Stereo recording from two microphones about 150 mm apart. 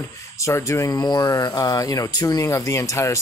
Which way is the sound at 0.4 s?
20° left (ahead or behind).